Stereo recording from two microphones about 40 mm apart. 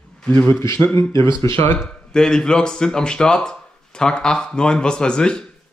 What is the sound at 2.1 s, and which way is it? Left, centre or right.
Speech, centre.